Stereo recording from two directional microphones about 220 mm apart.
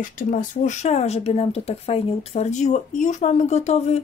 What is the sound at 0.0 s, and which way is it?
Speech, 35° left (ahead or behind).